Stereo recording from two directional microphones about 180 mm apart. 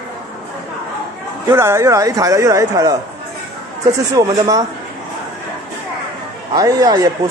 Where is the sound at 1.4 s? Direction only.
15° right (ahead or behind).